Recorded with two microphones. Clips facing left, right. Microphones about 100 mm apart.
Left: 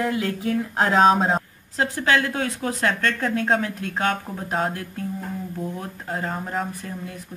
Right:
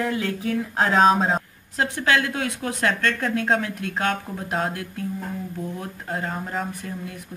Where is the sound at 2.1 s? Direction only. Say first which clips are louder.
Left 1 dB; 30° left (ahead or behind).